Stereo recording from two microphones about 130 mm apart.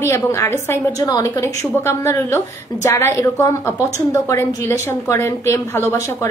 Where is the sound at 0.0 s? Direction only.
20° left (ahead or behind).